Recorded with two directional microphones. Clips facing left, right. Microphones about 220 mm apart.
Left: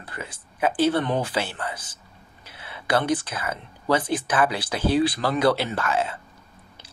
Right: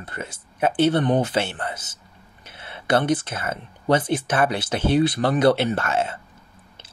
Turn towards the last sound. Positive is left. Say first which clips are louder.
# right 3 dB
turn(degrees=-25)  # may be behind; listen again after turning